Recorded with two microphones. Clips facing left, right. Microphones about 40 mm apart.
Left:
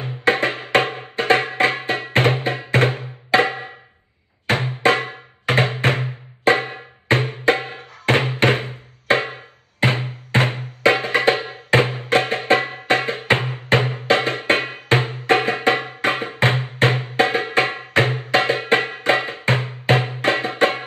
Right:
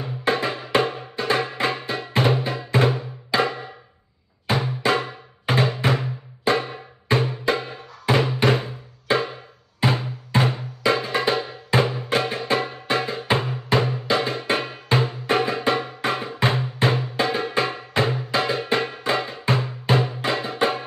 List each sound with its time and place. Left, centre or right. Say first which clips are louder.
0.0 s music: left 4 dB; left
4.5 s drum: left 4 dB; left